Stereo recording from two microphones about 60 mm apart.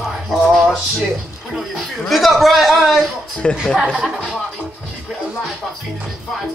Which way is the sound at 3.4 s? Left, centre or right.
Centre.